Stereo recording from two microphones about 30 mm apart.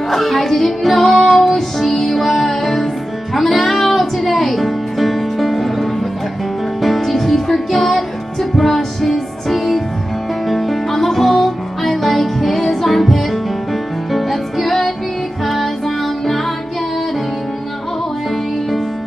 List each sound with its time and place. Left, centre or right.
0.1 s music: centre